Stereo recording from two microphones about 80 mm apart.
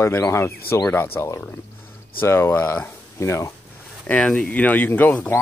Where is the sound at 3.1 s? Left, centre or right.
Left.